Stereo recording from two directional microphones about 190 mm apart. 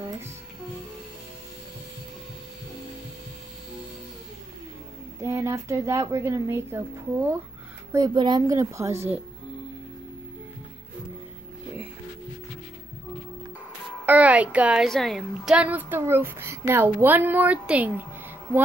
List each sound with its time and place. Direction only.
5.2 s a woman's voice: 15° right (ahead or behind)
7.9 s a woman's voice: 20° right (ahead or behind)
14.0 s a woman's voice: 10° right (ahead or behind)